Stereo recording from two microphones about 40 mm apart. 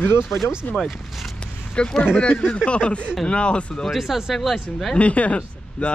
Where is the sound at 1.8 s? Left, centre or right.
Left.